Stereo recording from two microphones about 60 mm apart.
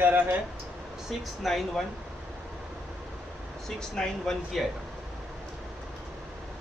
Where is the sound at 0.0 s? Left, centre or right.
Right.